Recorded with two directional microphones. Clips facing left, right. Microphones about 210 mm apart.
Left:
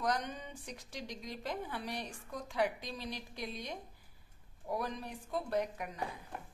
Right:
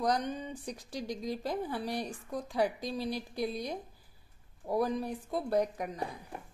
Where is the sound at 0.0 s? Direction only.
35° right (ahead or behind).